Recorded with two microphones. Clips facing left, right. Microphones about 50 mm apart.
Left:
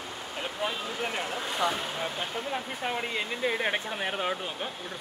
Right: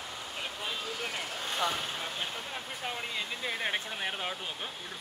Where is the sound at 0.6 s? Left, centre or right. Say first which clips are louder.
Left 5 dB; left.